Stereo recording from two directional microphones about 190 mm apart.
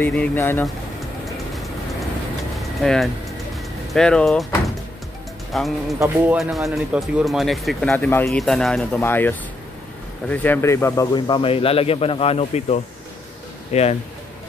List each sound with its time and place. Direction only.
0.0 s speech: 10° left (ahead or behind)
2.5 s music: centre (ahead or behind)
3.9 s speech: 5° left (ahead or behind)
5.5 s speech: centre (ahead or behind)
5.9 s speech: 10° right (ahead or behind)
7.9 s a man's voice: 10° left (ahead or behind); by 13.9 s 35° left (ahead or behind)